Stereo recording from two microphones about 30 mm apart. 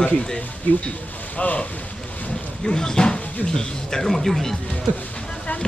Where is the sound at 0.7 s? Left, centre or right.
Left.